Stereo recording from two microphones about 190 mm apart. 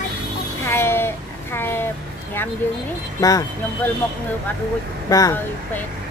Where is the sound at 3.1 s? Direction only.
20° left (ahead or behind).